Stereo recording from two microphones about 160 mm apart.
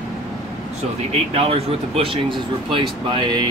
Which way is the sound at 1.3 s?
40° right (ahead or behind).